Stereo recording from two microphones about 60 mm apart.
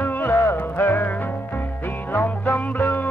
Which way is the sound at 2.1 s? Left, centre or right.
Left.